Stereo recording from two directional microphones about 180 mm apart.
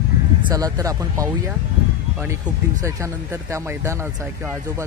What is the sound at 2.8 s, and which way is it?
Speech, 15° right (ahead or behind).